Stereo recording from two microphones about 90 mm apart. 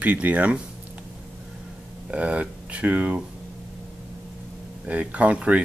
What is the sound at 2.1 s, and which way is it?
Speech, 15° right (ahead or behind).